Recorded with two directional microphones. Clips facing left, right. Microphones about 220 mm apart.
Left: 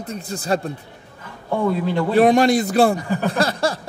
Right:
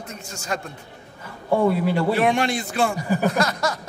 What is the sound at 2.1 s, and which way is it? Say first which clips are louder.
A man's voice: left 7 dB; 40° left (ahead or behind).